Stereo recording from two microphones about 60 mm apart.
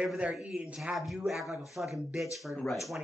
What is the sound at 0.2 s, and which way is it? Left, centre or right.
Speech, centre.